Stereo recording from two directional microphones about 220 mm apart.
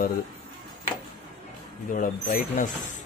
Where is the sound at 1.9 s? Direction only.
40° left (ahead or behind).